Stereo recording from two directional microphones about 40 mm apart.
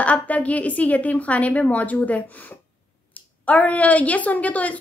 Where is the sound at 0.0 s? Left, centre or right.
Left.